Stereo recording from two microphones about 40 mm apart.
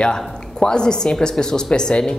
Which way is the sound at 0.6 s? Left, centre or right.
Centre.